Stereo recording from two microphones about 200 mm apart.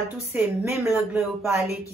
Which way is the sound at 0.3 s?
10° right (ahead or behind).